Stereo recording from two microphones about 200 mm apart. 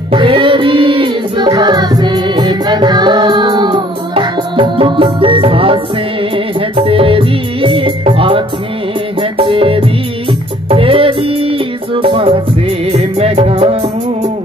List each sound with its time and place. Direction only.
0.1 s music: 25° right (ahead or behind)